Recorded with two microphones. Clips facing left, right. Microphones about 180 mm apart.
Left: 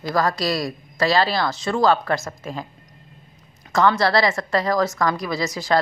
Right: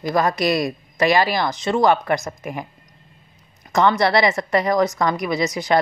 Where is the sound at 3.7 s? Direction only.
20° right (ahead or behind).